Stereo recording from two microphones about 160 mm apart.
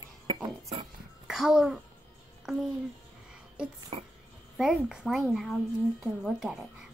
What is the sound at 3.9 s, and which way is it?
Speech, 35° right (ahead or behind).